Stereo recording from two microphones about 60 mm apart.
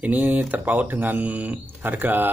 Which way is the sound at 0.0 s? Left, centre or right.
Right.